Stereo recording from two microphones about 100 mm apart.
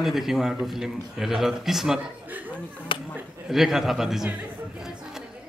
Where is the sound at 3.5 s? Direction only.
5° right (ahead or behind).